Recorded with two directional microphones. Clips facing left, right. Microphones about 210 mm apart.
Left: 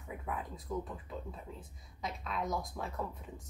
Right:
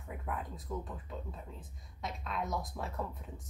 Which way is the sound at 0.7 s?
Centre (ahead or behind).